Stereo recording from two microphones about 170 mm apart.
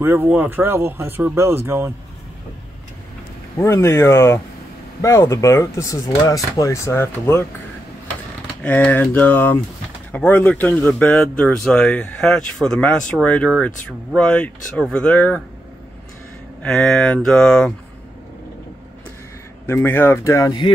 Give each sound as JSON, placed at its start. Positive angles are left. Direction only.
{"t": 0.0, "sound": "speech", "side_deg": -10}
{"t": 3.6, "sound": "speech", "side_deg": 15}
{"t": 8.6, "sound": "speech", "side_deg": 10}
{"t": 16.6, "sound": "speech", "side_deg": 5}
{"t": 19.6, "sound": "speech", "side_deg": 15}